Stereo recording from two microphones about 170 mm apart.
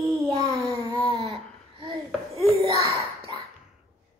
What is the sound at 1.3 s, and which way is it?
Babbling, 30° right (ahead or behind).